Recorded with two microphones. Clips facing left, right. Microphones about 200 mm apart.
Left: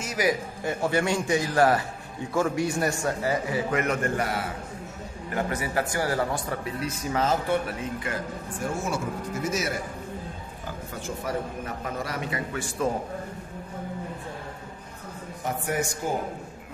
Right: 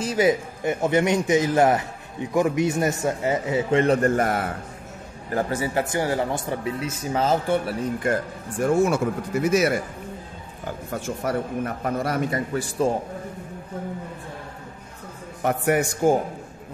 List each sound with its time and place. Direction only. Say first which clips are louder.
0.0 s a man's voice: right 6 dB; 25° right (ahead or behind); by 4.5 s 50° right (ahead or behind)
5.3 s a man's voice: right 4 dB; 30° right (ahead or behind)
8.8 s speech: right 7 dB; 60° right (ahead or behind)
10.9 s a man's voice: right 5 dB; 55° right (ahead or behind); by 12.9 s 35° right (ahead or behind)
15.4 s speech: right 7 dB; 65° right (ahead or behind)